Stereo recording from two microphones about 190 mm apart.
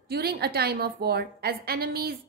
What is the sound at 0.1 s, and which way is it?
A woman's voice, 55° right (ahead or behind).